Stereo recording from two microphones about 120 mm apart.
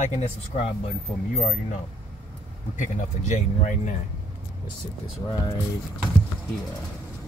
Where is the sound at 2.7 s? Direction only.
90° left.